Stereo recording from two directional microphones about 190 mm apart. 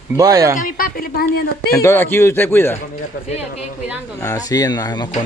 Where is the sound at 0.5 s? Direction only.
45° left (ahead or behind).